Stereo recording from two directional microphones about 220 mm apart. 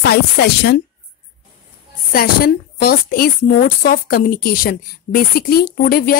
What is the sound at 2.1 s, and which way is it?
A woman's voice, 45° left (ahead or behind).